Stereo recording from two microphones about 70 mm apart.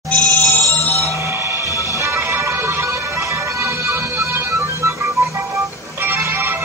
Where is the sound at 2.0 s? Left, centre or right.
Right.